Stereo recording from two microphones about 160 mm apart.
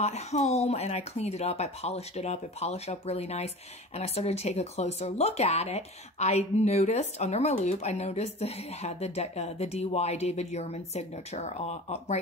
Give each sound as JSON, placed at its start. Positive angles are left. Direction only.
{"t": 0.0, "sound": "speech", "side_deg": 45}